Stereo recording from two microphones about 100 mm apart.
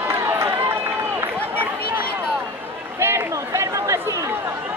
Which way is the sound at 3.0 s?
25° right (ahead or behind).